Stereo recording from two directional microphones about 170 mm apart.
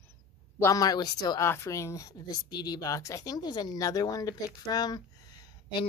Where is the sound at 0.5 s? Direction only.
20° left (ahead or behind).